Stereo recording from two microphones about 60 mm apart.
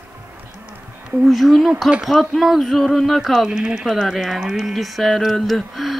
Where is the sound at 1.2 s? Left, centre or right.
Centre.